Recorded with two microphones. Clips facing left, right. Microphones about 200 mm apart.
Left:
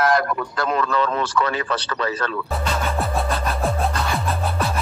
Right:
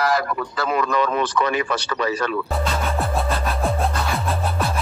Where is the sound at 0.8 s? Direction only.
15° right (ahead or behind).